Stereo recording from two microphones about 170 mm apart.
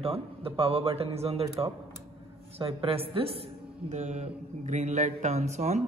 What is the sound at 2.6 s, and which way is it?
A man's voice, 35° right (ahead or behind).